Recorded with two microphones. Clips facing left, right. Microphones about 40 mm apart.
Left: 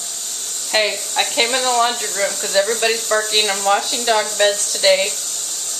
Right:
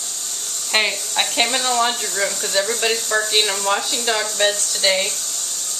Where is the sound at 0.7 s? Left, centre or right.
Centre.